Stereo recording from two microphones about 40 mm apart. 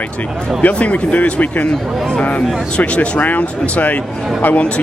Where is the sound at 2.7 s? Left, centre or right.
Left.